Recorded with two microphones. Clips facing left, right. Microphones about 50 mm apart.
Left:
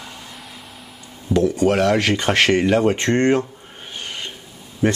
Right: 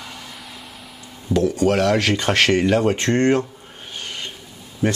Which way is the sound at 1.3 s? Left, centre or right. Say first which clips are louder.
Left 1 dB; centre.